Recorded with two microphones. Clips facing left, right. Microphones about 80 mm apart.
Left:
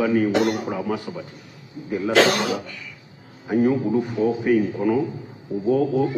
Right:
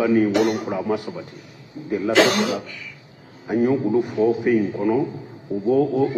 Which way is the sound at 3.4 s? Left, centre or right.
Centre.